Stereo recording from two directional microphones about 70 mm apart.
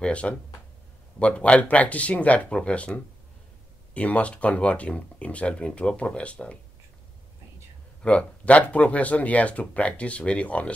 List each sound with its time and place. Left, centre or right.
0.0 s speech: centre
8.0 s speech: centre